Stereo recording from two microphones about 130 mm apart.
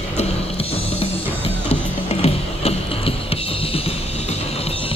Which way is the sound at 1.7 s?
50° left (ahead or behind).